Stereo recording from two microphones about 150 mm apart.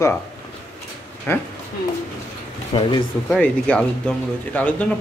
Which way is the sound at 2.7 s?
35° left (ahead or behind).